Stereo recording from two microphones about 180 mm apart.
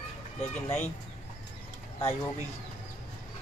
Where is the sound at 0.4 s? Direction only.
40° left (ahead or behind).